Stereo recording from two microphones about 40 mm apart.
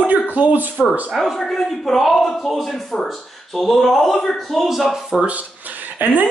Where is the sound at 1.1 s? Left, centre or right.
Centre.